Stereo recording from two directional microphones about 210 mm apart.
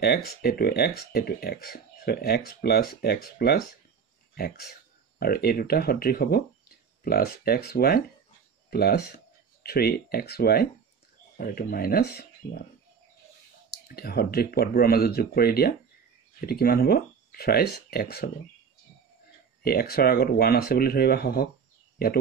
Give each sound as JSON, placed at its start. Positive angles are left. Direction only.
{"t": 0.0, "sound": "speech", "side_deg": 50}
{"t": 13.9, "sound": "speech", "side_deg": 45}
{"t": 19.6, "sound": "speech", "side_deg": 50}
{"t": 21.9, "sound": "a sound", "side_deg": 45}